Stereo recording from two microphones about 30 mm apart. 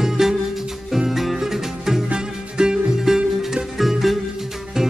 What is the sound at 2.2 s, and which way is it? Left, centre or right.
Music, right.